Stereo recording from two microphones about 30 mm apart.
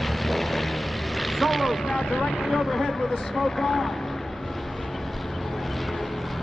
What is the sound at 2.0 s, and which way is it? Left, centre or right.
Speech, centre.